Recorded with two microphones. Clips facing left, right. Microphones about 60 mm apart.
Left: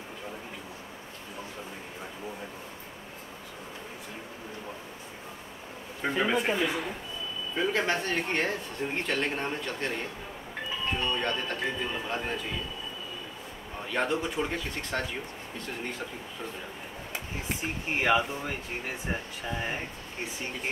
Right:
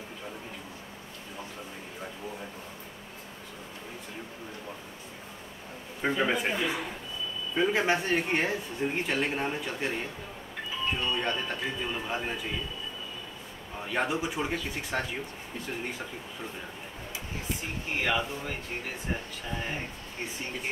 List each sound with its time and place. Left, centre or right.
6.0 s speech: centre
7.5 s speech: centre
13.8 s speech: centre
18.0 s speech: centre